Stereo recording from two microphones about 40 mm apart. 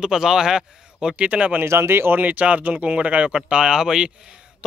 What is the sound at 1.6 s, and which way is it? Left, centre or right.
Speech, right.